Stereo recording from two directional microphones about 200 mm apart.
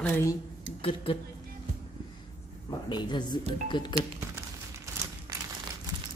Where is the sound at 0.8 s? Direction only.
25° left (ahead or behind).